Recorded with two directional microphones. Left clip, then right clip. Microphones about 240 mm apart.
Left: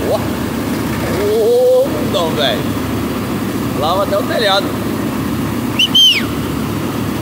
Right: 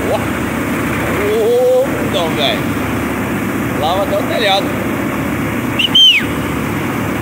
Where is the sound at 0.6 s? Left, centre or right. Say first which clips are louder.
Right 2 dB; centre.